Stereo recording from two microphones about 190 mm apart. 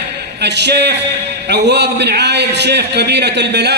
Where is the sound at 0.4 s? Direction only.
60° right (ahead or behind).